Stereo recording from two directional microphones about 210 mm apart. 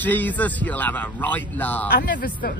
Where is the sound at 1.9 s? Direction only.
45° left (ahead or behind).